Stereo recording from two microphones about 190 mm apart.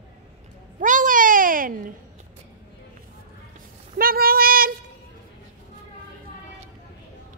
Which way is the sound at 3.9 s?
50° right (ahead or behind).